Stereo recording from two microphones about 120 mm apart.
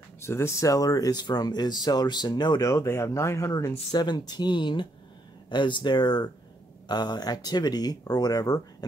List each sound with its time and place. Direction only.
0.2 s speech: 20° left (ahead or behind); by 2.7 s 35° left (ahead or behind)
2.7 s speech: 25° left (ahead or behind)